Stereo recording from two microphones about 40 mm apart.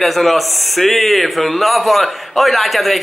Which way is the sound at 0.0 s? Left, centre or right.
Centre.